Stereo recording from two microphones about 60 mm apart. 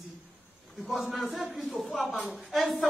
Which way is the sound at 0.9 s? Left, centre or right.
Centre.